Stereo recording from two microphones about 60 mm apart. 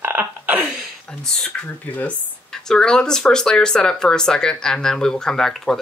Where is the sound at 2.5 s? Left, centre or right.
Centre.